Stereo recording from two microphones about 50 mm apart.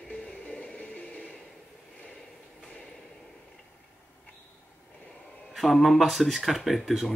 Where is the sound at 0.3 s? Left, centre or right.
Left.